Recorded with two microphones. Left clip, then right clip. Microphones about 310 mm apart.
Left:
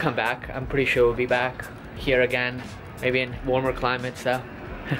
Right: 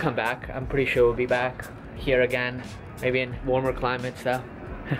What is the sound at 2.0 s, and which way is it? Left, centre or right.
Speech, centre.